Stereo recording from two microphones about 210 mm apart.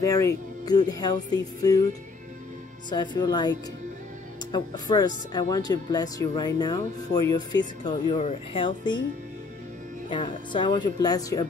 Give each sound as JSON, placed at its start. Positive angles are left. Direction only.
{"t": 0.0, "sound": "speech", "side_deg": 15}
{"t": 2.9, "sound": "speech", "side_deg": 20}
{"t": 10.0, "sound": "speech", "side_deg": 25}